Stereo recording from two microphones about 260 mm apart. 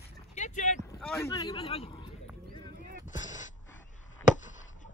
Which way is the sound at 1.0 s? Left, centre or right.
Centre.